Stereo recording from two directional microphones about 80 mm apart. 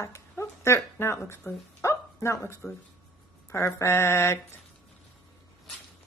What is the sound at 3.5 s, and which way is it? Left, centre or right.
Speech, left.